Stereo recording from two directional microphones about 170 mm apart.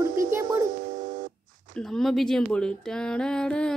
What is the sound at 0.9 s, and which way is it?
Telephone dialing, 45° right (ahead or behind).